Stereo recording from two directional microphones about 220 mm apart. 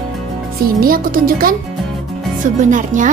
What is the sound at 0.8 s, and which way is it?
Music, 40° right (ahead or behind).